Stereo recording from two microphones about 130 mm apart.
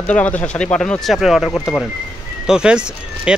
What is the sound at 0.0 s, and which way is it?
Speech, 10° left (ahead or behind).